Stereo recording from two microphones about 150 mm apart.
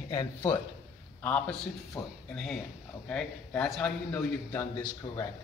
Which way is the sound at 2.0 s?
20° left (ahead or behind).